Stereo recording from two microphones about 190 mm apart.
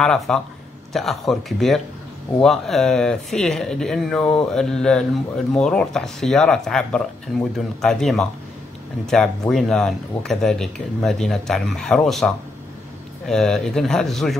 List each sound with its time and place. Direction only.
0.0 s speech: 5° left (ahead or behind)
13.3 s speech: 5° left (ahead or behind)